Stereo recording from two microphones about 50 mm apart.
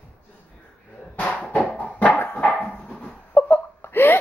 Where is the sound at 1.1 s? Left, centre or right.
Left.